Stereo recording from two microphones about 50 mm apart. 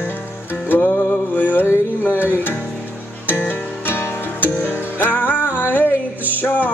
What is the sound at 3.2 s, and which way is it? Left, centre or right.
Music, left.